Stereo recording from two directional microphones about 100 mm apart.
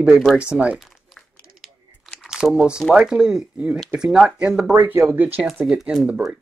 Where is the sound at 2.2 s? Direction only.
5° right (ahead or behind).